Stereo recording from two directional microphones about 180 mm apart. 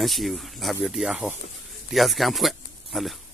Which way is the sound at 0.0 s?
Centre (ahead or behind).